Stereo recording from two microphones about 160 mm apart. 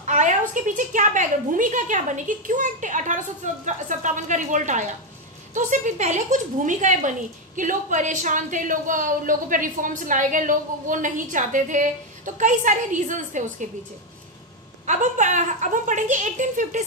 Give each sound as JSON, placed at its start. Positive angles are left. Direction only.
{"t": 0.0, "sound": "speech", "side_deg": -50}
{"t": 14.9, "sound": "speech", "side_deg": -50}